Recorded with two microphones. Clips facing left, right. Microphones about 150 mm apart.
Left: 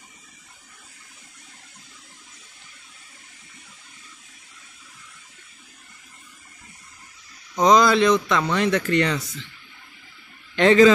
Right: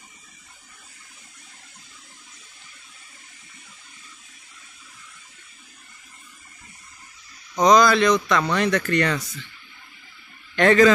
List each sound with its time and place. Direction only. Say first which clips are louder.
7.6 s speech: even; 25° left (ahead or behind)
10.5 s speech: left 1 dB; 20° left (ahead or behind)